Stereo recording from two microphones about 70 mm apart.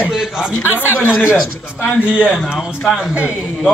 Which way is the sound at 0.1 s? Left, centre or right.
Centre.